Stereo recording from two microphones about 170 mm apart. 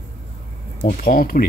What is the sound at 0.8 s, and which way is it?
Speech, 55° left (ahead or behind).